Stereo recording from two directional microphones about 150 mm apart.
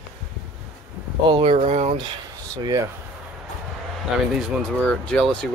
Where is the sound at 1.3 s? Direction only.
35° right (ahead or behind).